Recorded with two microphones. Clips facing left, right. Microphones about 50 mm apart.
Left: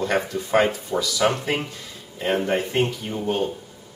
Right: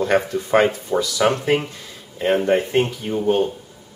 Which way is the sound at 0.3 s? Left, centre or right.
Centre.